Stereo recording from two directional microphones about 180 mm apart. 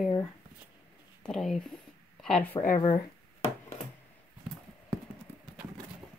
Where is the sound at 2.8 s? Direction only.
35° left (ahead or behind).